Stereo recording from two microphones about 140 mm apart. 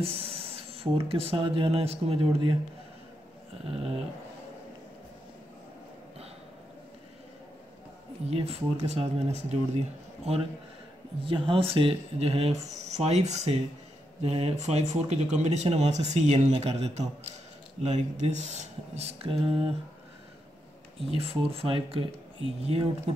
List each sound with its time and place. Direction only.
0.0 s speech: 45° right (ahead or behind)
8.3 s speech: 50° right (ahead or behind)
21.1 s speech: 45° right (ahead or behind)